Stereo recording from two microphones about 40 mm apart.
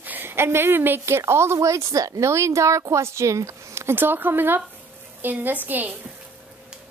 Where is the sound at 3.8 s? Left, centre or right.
Right.